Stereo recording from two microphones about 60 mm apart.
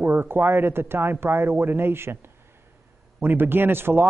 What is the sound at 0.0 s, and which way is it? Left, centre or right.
Speech, right.